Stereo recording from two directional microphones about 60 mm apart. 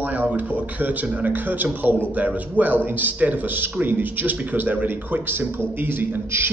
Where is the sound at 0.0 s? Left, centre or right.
Right.